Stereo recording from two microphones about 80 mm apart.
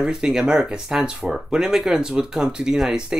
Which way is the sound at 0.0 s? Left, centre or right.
Centre.